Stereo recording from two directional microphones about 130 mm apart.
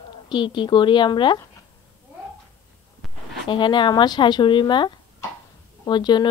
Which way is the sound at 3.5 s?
40° left (ahead or behind).